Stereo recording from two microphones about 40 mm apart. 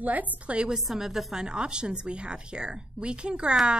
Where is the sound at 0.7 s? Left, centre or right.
Centre.